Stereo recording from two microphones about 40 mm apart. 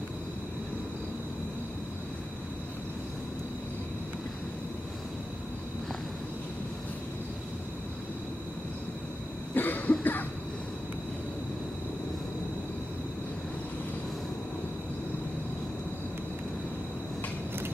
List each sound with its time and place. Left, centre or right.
9.5 s cough: left